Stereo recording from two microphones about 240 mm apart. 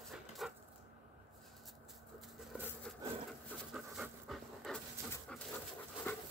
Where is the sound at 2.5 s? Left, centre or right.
Centre.